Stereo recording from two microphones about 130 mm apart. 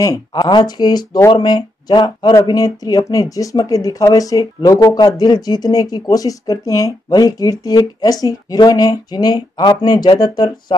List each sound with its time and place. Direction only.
0.0 s speech: 30° left (ahead or behind)